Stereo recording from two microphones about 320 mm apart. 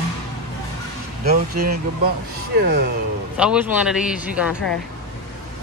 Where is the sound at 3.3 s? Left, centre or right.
Centre.